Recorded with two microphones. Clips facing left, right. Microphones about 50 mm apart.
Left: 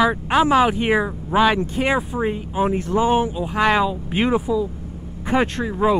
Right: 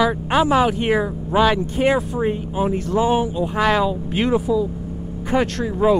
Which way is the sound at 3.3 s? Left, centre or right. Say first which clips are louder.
Even; centre.